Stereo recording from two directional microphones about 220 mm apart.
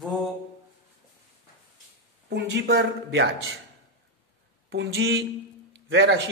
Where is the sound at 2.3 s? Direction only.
50° right (ahead or behind).